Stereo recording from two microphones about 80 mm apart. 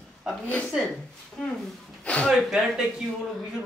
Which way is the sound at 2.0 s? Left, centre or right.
Centre.